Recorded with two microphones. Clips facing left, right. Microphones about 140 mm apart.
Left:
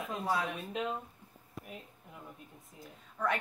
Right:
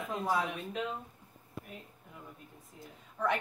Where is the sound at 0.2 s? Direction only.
5° right (ahead or behind).